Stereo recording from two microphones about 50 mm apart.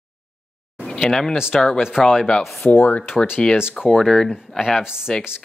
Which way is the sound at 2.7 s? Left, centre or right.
Left.